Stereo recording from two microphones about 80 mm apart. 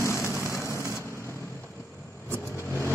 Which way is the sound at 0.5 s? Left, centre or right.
Left.